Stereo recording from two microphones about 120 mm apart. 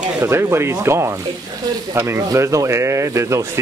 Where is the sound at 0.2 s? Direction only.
20° right (ahead or behind).